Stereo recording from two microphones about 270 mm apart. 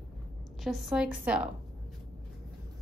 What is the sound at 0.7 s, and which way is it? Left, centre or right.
Speech, centre.